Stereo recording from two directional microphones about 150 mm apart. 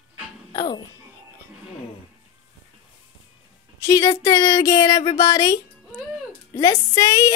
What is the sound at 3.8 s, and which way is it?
Speech, 20° left (ahead or behind).